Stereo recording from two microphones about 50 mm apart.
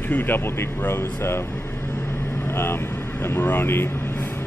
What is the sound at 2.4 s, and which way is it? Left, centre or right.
Vehicle, left.